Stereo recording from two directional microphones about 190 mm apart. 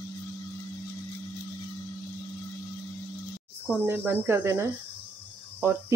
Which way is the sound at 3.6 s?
10° right (ahead or behind).